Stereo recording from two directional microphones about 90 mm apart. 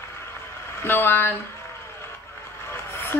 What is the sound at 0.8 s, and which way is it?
Speech, 25° left (ahead or behind).